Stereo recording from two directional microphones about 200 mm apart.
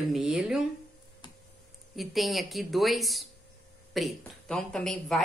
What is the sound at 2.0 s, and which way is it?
A woman's voice, centre (ahead or behind).